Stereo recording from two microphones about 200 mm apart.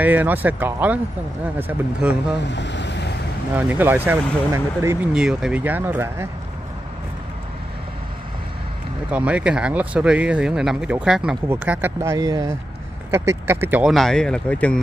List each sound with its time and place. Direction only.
0.0 s speech: 10° right (ahead or behind)
2.4 s speech: 60° left (ahead or behind)
3.5 s speech: 10° right (ahead or behind)
9.1 s speech: 5° right (ahead or behind)